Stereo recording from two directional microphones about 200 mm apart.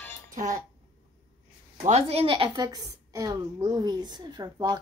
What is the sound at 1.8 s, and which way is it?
A woman's voice, 30° right (ahead or behind).